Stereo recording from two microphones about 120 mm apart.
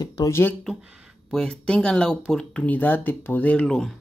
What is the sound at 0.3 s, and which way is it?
Speech, 20° left (ahead or behind).